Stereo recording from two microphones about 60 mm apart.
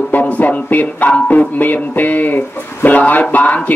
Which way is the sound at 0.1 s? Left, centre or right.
Left.